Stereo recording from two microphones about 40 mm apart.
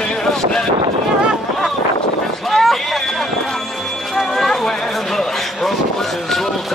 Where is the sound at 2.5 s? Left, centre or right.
Centre.